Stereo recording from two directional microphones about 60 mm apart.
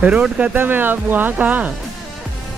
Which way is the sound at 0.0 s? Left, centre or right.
Centre.